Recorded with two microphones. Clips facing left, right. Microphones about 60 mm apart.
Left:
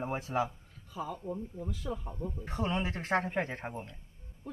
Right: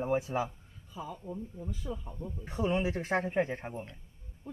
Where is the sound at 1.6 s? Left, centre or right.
Left.